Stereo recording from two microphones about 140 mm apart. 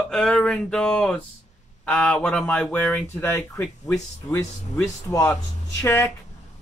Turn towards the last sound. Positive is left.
turn(degrees=20)  # may be behind; listen again after turning